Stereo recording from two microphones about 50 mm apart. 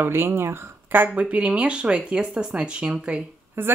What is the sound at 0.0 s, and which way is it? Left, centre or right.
Speech, right.